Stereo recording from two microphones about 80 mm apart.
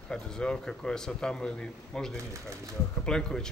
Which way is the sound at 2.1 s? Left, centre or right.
Right.